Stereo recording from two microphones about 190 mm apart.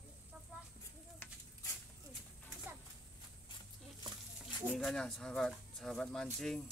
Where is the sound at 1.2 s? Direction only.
10° left (ahead or behind).